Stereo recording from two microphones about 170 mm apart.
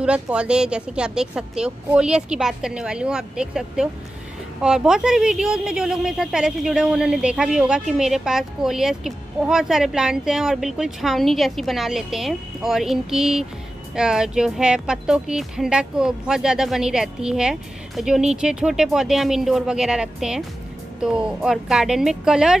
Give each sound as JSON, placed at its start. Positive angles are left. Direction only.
{"t": 0.0, "sound": "a woman's voice", "side_deg": -5}